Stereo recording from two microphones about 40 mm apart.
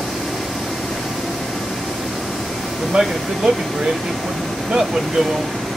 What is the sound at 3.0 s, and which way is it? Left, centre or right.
Speech, centre.